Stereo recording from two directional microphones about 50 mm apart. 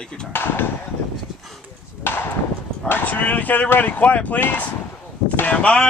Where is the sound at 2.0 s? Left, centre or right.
Left.